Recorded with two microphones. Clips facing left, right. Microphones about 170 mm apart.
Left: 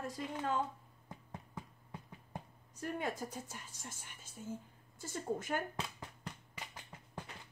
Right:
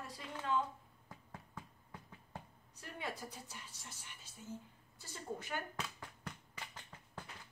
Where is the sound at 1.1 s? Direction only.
20° left (ahead or behind).